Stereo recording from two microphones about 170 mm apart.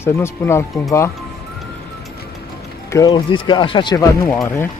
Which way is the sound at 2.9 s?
20° left (ahead or behind).